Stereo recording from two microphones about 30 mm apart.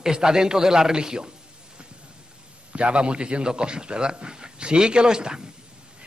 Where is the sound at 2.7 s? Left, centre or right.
Right.